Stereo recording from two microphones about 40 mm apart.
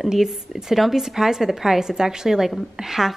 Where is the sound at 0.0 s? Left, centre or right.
Centre.